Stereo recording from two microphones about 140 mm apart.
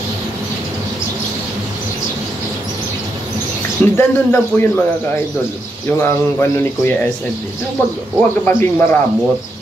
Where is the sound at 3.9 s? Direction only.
15° left (ahead or behind).